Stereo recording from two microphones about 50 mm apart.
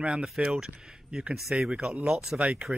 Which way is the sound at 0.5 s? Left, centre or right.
Centre.